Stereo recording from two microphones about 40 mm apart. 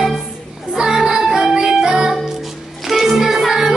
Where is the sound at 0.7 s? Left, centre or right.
Centre.